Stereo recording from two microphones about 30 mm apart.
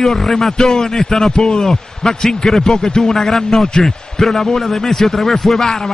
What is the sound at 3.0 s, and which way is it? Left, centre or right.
A man's voice, centre.